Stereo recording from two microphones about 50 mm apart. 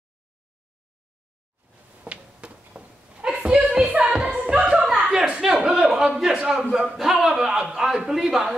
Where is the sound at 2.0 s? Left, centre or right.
Right.